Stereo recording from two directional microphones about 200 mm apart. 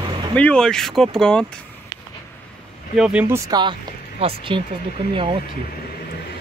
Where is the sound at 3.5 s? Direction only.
20° right (ahead or behind).